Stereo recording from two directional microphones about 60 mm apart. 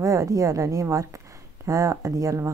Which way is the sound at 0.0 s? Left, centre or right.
Right.